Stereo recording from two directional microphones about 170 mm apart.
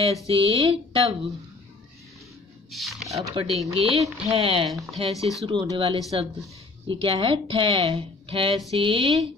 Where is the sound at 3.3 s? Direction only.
35° right (ahead or behind).